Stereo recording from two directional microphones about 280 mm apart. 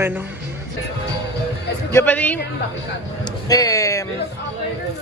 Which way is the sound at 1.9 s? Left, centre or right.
Centre.